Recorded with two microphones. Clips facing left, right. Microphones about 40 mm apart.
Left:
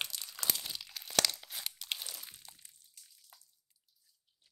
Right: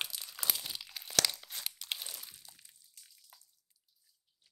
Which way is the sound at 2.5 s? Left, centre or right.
Left.